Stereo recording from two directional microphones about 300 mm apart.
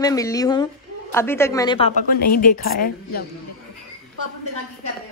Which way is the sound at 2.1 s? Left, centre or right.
Left.